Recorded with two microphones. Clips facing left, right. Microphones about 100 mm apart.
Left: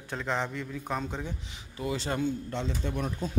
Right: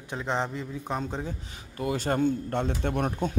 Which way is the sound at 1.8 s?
50° right (ahead or behind).